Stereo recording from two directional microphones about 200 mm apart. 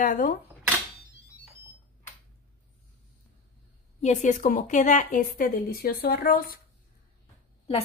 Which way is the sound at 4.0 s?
35° left (ahead or behind).